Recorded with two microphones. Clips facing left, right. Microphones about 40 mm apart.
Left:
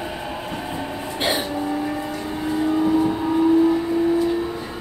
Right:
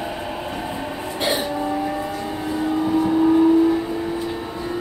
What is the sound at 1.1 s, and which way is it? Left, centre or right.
Vehicle, left.